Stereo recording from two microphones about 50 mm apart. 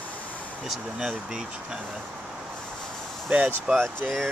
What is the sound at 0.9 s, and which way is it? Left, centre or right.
Speech, centre.